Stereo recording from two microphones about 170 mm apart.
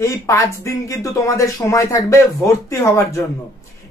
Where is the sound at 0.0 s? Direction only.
20° left (ahead or behind).